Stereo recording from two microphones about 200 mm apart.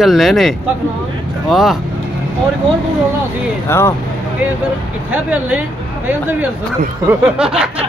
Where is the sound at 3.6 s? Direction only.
15° left (ahead or behind).